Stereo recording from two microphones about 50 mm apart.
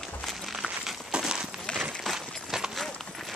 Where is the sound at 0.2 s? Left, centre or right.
Centre.